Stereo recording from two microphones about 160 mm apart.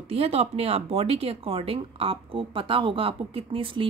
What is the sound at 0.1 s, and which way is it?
Speech, 40° right (ahead or behind).